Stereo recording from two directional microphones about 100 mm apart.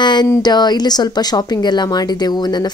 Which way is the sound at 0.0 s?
45° left (ahead or behind).